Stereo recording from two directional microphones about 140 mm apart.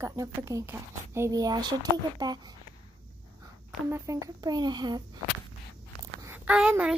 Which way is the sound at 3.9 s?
25° right (ahead or behind).